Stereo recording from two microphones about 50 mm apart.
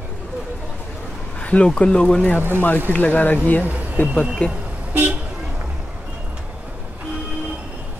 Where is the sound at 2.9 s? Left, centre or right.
Left.